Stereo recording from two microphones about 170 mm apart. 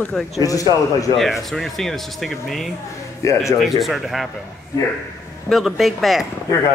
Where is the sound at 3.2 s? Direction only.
15° left (ahead or behind).